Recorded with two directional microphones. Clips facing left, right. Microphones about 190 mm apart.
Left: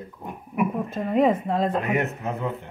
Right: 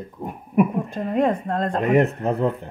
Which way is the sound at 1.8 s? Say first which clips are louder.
Right 7 dB; 35° right (ahead or behind).